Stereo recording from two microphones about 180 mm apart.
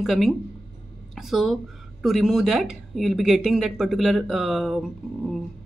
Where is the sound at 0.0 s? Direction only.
Centre (ahead or behind).